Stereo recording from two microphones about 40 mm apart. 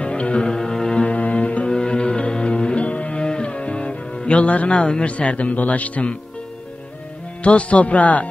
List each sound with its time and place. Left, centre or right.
0.0 s music: left
1.0 s music: left
4.2 s a man's voice: left
7.4 s a man's voice: left